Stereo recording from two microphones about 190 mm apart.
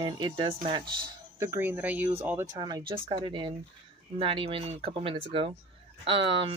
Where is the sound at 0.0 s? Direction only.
25° right (ahead or behind).